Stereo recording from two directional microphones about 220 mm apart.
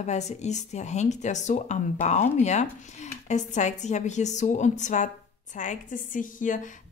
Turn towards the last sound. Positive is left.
turn(degrees=35)  # may be behind; listen again after turning